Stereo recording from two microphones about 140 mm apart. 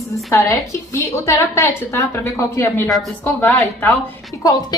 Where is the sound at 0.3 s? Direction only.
20° left (ahead or behind).